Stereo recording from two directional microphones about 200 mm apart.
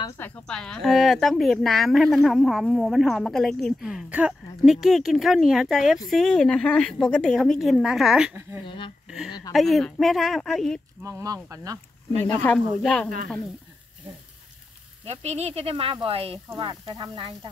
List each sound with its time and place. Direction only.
0.2 s speech: 5° left (ahead or behind)
8.6 s speech: 25° left (ahead or behind)
9.0 s speech: 5° right (ahead or behind)
11.0 s speech: 15° right (ahead or behind)
12.3 s speech: 10° left (ahead or behind)
15.0 s speech: 35° right (ahead or behind)